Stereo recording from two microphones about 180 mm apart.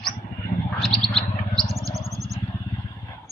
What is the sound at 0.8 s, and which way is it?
Bird, centre (ahead or behind).